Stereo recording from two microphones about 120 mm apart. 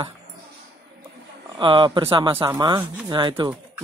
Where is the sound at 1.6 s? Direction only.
45° right (ahead or behind).